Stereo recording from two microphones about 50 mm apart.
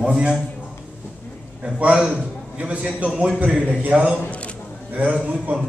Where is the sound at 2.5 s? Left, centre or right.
Right.